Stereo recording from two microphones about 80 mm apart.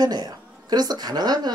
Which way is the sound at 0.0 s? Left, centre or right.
Right.